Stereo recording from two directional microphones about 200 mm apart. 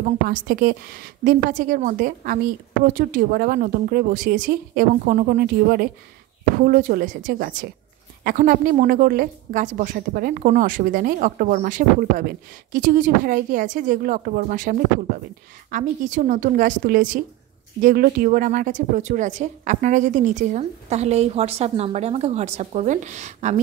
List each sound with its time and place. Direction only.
0.0 s a woman's voice: 45° right (ahead or behind)